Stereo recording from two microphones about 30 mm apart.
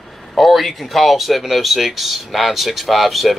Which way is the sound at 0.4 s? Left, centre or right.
Centre.